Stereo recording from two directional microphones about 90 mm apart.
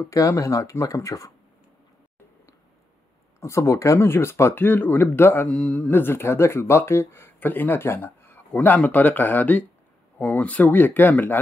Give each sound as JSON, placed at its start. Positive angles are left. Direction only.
{"t": 0.1, "sound": "speech", "side_deg": 40}
{"t": 3.3, "sound": "speech", "side_deg": 35}
{"t": 5.9, "sound": "speech", "side_deg": 25}